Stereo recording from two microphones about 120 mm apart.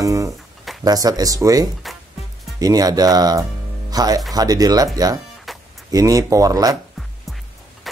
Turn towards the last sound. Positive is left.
turn(degrees=-30)  # may be behind; listen again after turning